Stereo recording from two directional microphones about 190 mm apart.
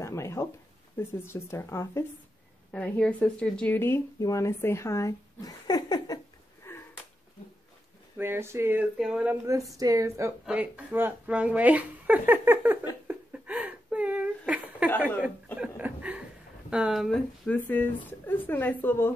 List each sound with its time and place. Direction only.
0.0 s speech: 15° left (ahead or behind)
6.7 s a sound: 10° left (ahead or behind)
8.2 s speech: 10° right (ahead or behind)
13.1 s a sound: 5° right (ahead or behind)
15.5 s chuckle: 5° right (ahead or behind)
16.7 s speech: 5° right (ahead or behind)